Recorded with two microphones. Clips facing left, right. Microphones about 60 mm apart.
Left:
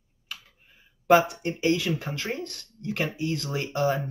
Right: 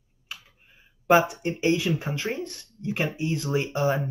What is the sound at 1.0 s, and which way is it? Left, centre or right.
Speech, right.